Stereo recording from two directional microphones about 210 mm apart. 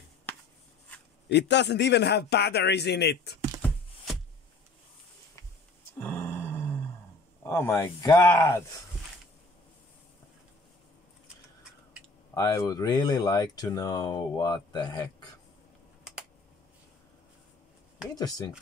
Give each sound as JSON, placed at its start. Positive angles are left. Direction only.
{"t": 1.3, "sound": "a man's voice", "side_deg": 55}
{"t": 5.9, "sound": "a sound", "side_deg": 10}
{"t": 7.4, "sound": "speech", "side_deg": 10}
{"t": 12.4, "sound": "speech", "side_deg": 15}
{"t": 18.1, "sound": "speech", "side_deg": 20}